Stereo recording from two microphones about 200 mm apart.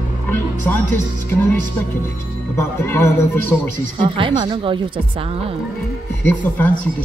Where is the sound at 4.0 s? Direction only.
25° right (ahead or behind).